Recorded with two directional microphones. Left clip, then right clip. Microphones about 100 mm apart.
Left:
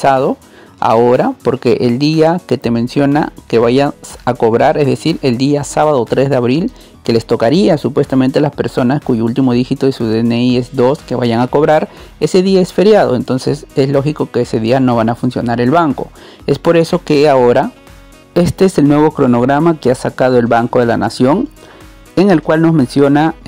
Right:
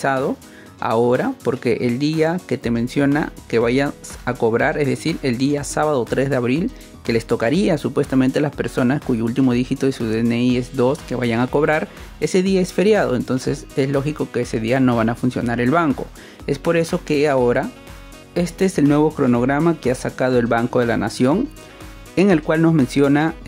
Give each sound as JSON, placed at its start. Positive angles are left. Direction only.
{"t": 0.0, "sound": "speech", "side_deg": 40}
{"t": 2.0, "sound": "speech", "side_deg": 45}
{"t": 7.8, "sound": "speech", "side_deg": 35}
{"t": 13.1, "sound": "speech", "side_deg": 30}
{"t": 14.9, "sound": "speech", "side_deg": 25}
{"t": 16.4, "sound": "speech", "side_deg": 50}
{"t": 18.3, "sound": "speech", "side_deg": 60}
{"t": 18.9, "sound": "speech", "side_deg": 30}
{"t": 22.1, "sound": "speech", "side_deg": 45}
{"t": 22.8, "sound": "speech", "side_deg": 30}